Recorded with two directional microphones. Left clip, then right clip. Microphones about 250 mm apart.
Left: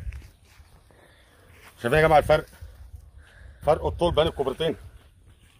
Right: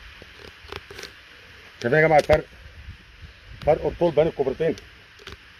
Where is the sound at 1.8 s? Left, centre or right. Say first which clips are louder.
Right 1 dB; left.